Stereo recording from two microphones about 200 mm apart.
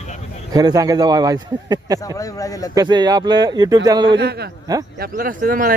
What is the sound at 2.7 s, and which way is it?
A man's voice, 20° right (ahead or behind).